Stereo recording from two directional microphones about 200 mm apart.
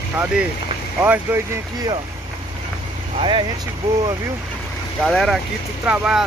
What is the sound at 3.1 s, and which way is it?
Speech, 25° right (ahead or behind).